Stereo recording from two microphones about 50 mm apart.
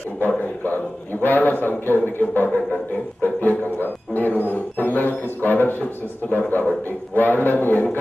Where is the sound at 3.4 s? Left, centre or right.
Left.